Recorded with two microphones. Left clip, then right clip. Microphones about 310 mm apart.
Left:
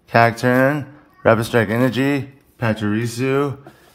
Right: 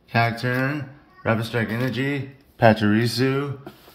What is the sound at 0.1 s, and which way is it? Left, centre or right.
Mantra, centre.